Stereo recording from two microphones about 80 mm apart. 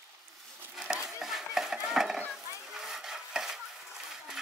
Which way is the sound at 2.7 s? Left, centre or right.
Centre.